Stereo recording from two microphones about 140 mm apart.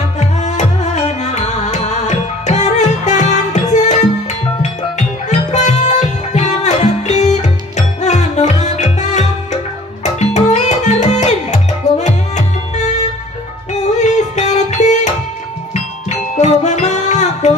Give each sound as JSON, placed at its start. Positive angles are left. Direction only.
{"t": 0.2, "sound": "music", "side_deg": 60}